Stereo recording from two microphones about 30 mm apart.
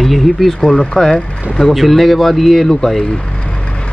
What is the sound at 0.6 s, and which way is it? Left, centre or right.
Speech, centre.